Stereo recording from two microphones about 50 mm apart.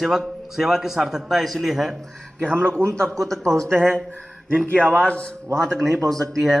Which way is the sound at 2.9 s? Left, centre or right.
Centre.